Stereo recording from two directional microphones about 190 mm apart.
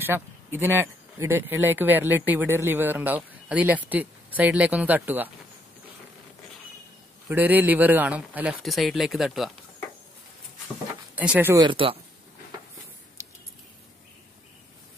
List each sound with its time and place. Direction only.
0.0 s speech: 10° right (ahead or behind)
7.2 s speech: 10° right (ahead or behind)
11.1 s speech: 10° right (ahead or behind)
11.6 s speech: 30° right (ahead or behind)
13.2 s a sound: 15° right (ahead or behind)